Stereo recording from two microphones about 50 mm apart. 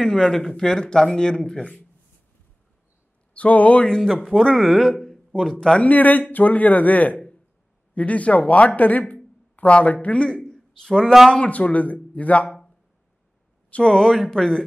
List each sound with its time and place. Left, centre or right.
0.0 s speech: centre
3.3 s speech: left
3.9 s speech: centre
4.6 s speech: centre
5.3 s speech: centre
5.9 s speech: left; by 11.1 s centre
11.4 s speech: left
13.7 s speech: centre